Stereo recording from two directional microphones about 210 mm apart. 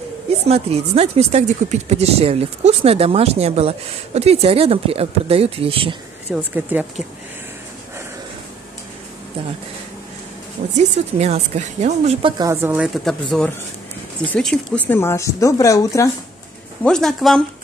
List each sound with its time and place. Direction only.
0.5 s speech: 30° right (ahead or behind)
6.3 s speech: 5° right (ahead or behind)
10.8 s speech: 30° right (ahead or behind); by 16.1 s 15° left (ahead or behind)
16.8 s speech: centre (ahead or behind)